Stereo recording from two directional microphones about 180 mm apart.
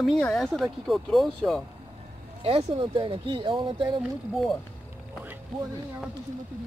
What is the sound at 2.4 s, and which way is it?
Speech, 30° right (ahead or behind).